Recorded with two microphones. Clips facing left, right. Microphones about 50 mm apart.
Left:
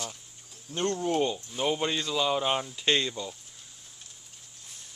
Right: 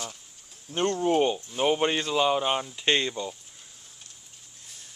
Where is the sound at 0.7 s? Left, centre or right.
Right.